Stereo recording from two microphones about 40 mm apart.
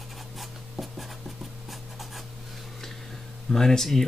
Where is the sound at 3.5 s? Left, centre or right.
Centre.